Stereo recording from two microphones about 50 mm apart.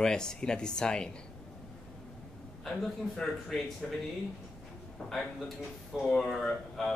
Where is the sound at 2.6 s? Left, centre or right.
Centre.